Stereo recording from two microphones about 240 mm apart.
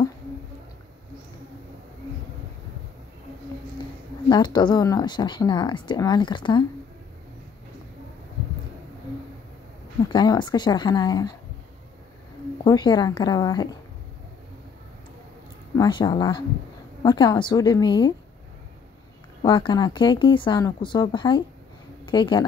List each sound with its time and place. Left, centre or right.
4.3 s speech: centre
10.0 s speech: centre
12.6 s speech: centre
15.8 s speech: centre
19.4 s a woman's voice: centre